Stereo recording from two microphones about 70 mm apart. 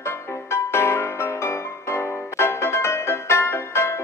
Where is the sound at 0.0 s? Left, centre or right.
Left.